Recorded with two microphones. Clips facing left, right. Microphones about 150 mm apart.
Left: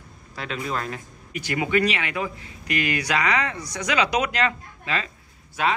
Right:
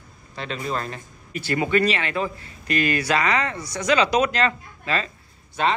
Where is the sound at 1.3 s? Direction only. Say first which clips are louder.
Right 2 dB; 15° left (ahead or behind).